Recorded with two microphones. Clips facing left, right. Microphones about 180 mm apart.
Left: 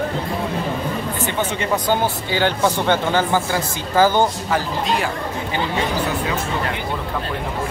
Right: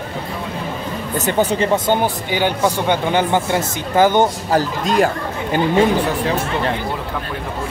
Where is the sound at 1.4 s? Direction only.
35° right (ahead or behind).